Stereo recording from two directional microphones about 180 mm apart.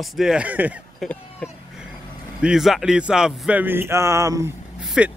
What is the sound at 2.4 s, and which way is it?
Speech, centre (ahead or behind).